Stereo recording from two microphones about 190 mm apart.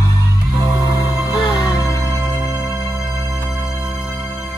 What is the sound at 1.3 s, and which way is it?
Music, 25° left (ahead or behind).